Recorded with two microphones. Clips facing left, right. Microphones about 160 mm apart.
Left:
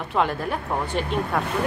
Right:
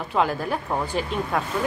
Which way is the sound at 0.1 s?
Centre (ahead or behind).